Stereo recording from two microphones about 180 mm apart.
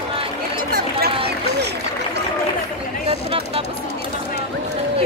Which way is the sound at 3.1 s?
35° right (ahead or behind).